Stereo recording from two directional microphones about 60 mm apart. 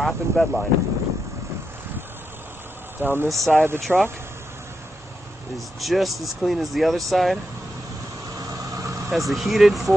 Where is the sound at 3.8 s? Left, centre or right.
Centre.